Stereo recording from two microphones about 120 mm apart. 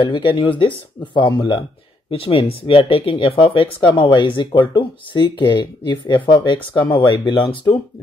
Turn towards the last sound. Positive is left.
turn(degrees=40)  # may be behind; listen again after turning